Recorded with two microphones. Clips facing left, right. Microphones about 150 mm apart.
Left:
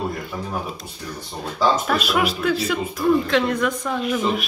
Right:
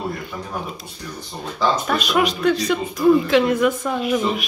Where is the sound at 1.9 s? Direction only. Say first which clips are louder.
Right 1 dB; centre (ahead or behind).